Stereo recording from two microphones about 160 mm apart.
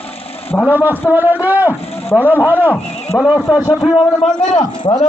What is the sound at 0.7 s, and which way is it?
A man's voice, 10° right (ahead or behind).